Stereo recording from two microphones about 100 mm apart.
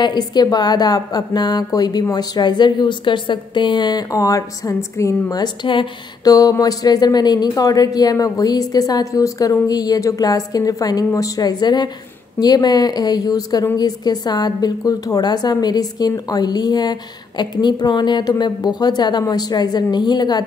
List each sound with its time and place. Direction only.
0.0 s a woman's voice: 45° left (ahead or behind); by 5.4 s 30° left (ahead or behind)
5.4 s a woman's voice: 55° left (ahead or behind)
6.2 s a woman's voice: 40° left (ahead or behind)